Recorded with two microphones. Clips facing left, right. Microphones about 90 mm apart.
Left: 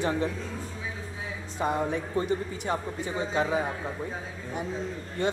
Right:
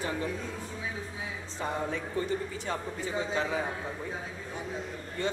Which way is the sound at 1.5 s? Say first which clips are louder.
Left 5 dB; 15° left (ahead or behind).